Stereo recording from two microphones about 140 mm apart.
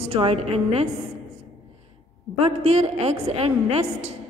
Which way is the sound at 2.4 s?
45° right (ahead or behind).